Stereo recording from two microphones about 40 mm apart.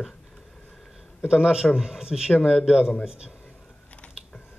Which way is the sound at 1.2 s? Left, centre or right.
Right.